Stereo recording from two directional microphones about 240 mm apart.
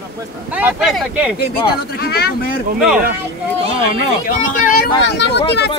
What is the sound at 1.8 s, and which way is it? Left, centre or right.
Speech, left.